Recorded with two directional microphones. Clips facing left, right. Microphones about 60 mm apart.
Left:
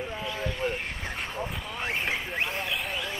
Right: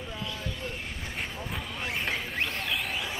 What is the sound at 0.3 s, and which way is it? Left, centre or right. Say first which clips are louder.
Vehicle: left 6 dB; left.